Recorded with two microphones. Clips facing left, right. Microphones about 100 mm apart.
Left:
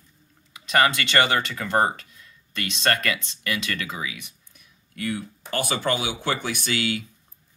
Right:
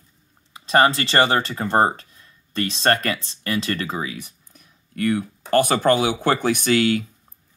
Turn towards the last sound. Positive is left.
turn(degrees=-50)  # may be behind; listen again after turning